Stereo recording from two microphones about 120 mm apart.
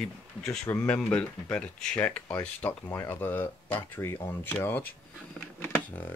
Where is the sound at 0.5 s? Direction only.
20° left (ahead or behind).